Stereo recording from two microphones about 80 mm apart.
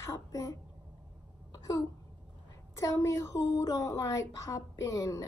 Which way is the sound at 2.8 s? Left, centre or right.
Left.